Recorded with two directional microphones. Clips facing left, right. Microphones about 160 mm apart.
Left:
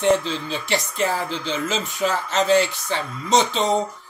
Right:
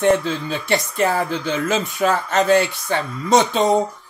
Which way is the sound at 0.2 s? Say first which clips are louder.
Right 3 dB; 50° right (ahead or behind).